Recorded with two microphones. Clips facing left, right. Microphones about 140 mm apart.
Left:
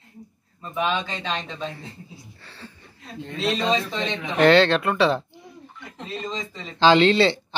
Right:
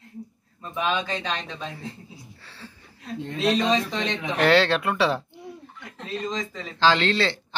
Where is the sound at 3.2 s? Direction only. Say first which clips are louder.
Right 2 dB; 10° right (ahead or behind).